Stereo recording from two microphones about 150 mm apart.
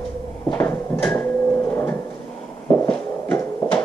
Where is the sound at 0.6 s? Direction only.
15° left (ahead or behind).